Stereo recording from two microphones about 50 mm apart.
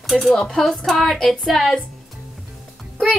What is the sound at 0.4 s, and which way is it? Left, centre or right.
Speech, centre.